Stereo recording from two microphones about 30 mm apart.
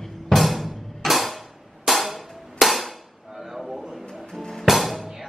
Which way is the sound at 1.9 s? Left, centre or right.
Centre.